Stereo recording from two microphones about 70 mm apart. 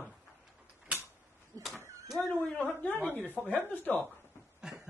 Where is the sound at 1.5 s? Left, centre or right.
Right.